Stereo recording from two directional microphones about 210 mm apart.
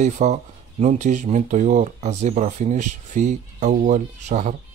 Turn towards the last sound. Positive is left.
turn(degrees=-35)  # may be behind; listen again after turning